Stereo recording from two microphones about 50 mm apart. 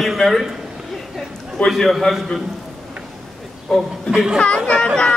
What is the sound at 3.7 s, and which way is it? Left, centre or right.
Speech, centre.